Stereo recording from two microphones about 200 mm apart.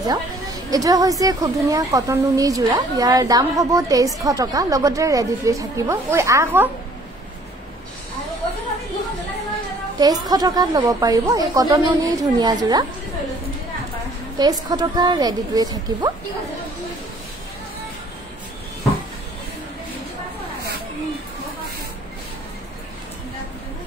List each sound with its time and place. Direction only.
0.0 s a woman's voice: 20° right (ahead or behind)
9.9 s a woman's voice: 20° right (ahead or behind)
14.4 s a woman's voice: 20° right (ahead or behind)